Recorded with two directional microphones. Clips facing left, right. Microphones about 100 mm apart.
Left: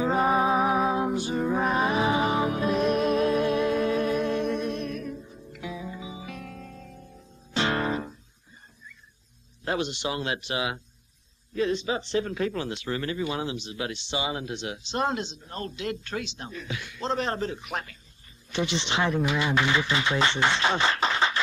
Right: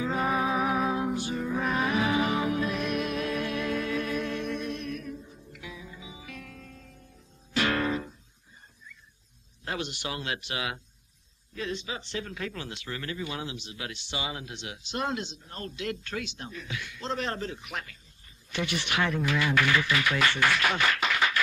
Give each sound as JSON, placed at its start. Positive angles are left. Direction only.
{"t": 0.0, "sound": "music", "side_deg": 30}
{"t": 9.7, "sound": "speech", "side_deg": 20}